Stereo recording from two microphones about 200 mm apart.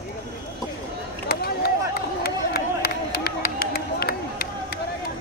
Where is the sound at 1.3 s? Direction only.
50° left (ahead or behind).